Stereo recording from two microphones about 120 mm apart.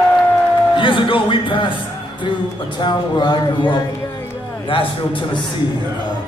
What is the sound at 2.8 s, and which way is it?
Speech, 40° left (ahead or behind).